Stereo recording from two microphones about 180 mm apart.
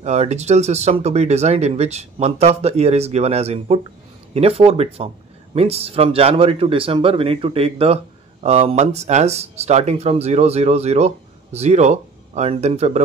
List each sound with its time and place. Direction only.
0.0 s speech: 40° right (ahead or behind)